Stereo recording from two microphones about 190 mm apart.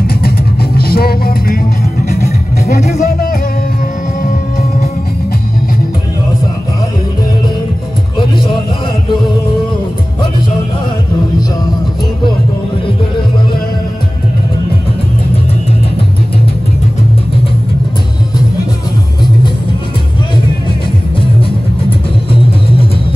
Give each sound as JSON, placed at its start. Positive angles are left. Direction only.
{"t": 0.7, "sound": "music", "side_deg": 55}